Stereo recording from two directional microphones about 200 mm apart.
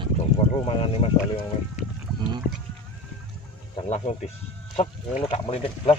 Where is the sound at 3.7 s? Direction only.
35° left (ahead or behind).